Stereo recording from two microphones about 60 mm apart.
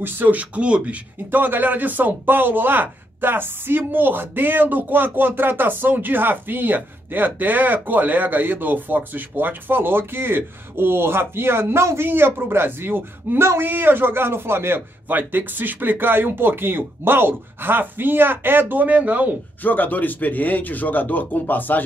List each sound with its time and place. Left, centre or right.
0.0 s speech: right
12.1 s speech: right
19.6 s speech: left